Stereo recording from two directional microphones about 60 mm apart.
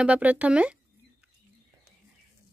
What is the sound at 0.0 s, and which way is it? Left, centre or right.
Speech, right.